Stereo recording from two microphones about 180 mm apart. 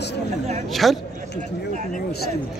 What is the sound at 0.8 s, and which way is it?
Speech, centre (ahead or behind).